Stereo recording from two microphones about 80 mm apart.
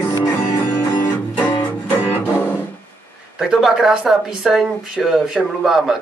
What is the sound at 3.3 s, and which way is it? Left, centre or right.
Speech, centre.